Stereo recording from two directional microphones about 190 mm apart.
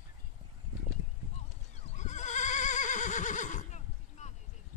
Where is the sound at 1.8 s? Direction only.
40° left (ahead or behind).